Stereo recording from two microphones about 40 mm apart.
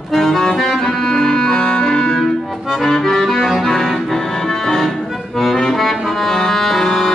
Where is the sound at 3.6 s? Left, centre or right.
Centre.